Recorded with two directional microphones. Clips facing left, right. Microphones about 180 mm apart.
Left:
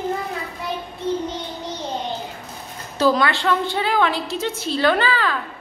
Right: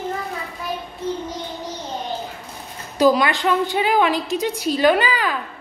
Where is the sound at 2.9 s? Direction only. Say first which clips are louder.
Right 2 dB; 15° right (ahead or behind).